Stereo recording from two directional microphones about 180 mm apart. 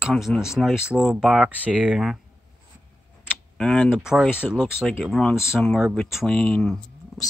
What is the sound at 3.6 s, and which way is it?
Speech, 5° left (ahead or behind).